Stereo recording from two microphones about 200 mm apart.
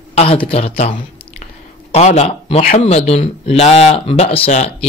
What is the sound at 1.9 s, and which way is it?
Speech, 35° left (ahead or behind).